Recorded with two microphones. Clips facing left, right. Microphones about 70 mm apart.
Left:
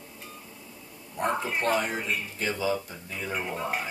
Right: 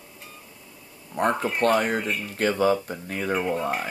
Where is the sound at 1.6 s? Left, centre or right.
Right.